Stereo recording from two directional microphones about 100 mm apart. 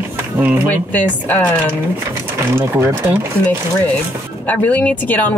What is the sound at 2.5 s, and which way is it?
Speech, 25° right (ahead or behind).